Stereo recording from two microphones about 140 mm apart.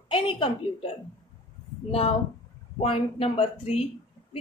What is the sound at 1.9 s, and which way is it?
A woman's voice, 45° left (ahead or behind).